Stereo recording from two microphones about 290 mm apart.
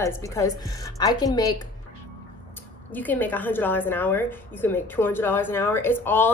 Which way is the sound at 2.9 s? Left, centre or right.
Centre.